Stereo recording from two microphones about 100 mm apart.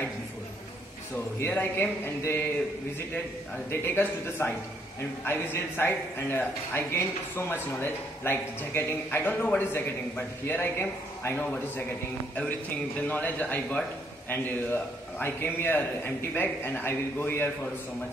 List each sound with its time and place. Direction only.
1.1 s a man's voice: 20° left (ahead or behind)
3.7 s a man's voice: 25° left (ahead or behind)
13.0 s a man's voice: 15° left (ahead or behind)